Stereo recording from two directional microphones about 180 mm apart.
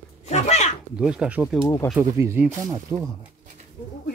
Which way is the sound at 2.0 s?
15° right (ahead or behind).